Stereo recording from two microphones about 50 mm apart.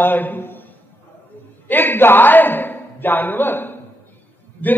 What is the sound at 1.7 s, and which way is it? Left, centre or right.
A man's voice, left.